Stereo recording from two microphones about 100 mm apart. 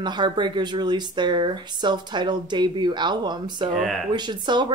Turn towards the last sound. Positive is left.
turn(degrees=-50)  # may be behind; listen again after turning